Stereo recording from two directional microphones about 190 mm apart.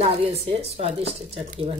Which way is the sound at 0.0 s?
30° right (ahead or behind).